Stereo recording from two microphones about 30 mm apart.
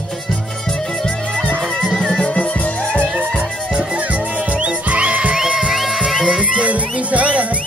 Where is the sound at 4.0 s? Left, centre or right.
Right.